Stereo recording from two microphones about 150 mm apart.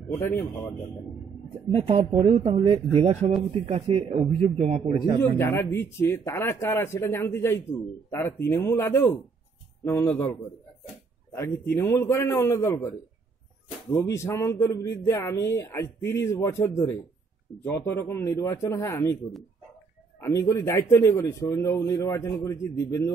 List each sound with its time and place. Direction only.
0.2 s speech: 10° left (ahead or behind)
1.7 s a man's voice: 45° right (ahead or behind)
5.1 s speech: 25° right (ahead or behind)
5.4 s speech: 15° left (ahead or behind)
11.7 s speech: 15° left (ahead or behind)
20.2 s speech: 20° left (ahead or behind)